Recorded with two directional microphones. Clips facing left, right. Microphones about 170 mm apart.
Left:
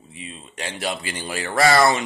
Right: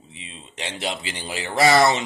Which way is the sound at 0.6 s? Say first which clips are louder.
Left 1 dB; 20° right (ahead or behind).